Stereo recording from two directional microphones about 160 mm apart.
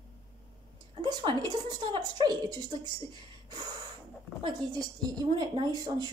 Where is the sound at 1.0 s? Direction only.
30° right (ahead or behind).